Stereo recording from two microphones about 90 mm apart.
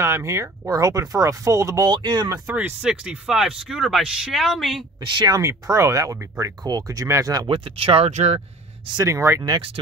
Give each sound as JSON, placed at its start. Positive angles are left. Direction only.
{"t": 0.0, "sound": "speech", "side_deg": -30}
{"t": 1.9, "sound": "speech", "side_deg": -50}
{"t": 2.4, "sound": "speech", "side_deg": -20}
{"t": 2.8, "sound": "speech", "side_deg": -10}
{"t": 5.0, "sound": "speech", "side_deg": -55}
{"t": 5.4, "sound": "speech", "side_deg": -35}
{"t": 7.4, "sound": "speech", "side_deg": -70}
{"t": 8.9, "sound": "speech", "side_deg": -35}